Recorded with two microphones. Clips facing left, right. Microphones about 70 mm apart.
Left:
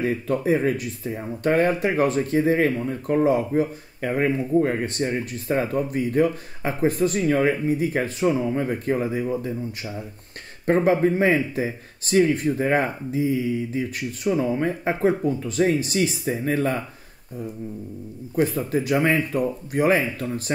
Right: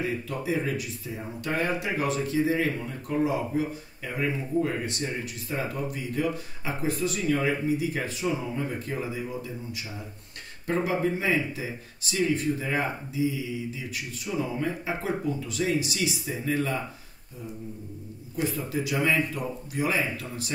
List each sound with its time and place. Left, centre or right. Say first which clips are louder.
0.0 s speech: left 7 dB; left
10.7 s speech: left 8 dB; left
18.3 s speech: left 7 dB; left